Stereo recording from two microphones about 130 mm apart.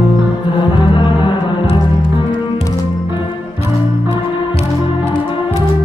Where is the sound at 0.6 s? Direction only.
40° left (ahead or behind).